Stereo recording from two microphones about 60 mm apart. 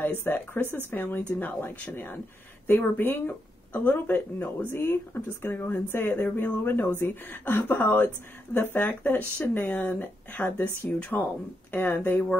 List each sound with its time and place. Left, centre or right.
0.0 s speech: left
10.9 s speech: centre
11.7 s speech: left